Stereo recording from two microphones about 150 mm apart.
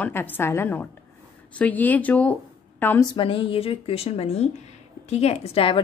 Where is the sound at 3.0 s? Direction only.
30° left (ahead or behind).